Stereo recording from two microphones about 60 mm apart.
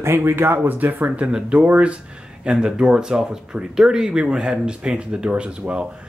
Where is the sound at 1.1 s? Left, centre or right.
Centre.